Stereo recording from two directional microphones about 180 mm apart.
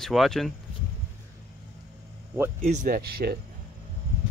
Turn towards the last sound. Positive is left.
turn(degrees=-60)  # may be behind; listen again after turning